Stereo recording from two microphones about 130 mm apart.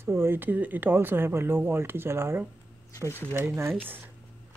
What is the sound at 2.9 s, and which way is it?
Speech, 20° left (ahead or behind).